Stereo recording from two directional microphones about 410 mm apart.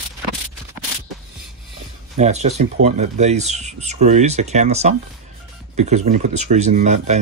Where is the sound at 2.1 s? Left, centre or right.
Centre.